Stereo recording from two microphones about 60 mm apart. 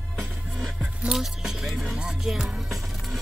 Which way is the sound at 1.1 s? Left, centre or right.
Centre.